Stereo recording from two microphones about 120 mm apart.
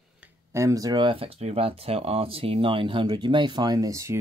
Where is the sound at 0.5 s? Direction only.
25° right (ahead or behind).